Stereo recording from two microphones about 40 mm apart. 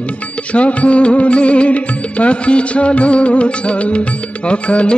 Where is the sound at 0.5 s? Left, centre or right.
Left.